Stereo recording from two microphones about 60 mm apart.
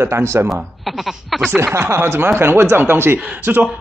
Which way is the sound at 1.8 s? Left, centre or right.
Right.